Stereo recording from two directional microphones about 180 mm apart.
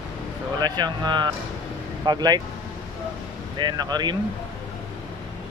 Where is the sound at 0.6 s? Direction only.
25° right (ahead or behind).